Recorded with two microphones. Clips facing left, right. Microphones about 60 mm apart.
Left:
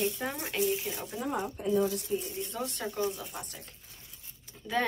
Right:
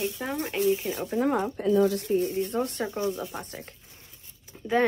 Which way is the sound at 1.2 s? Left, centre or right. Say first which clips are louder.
Right 7 dB; right.